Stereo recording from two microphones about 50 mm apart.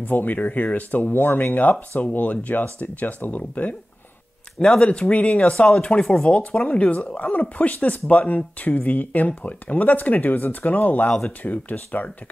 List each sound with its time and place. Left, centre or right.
0.0 s speech: left
4.6 s speech: centre; by 11.1 s left
11.1 s speech: centre
11.4 s speech: left